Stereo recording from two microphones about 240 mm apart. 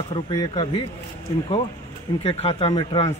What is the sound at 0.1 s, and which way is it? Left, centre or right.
Speech, centre.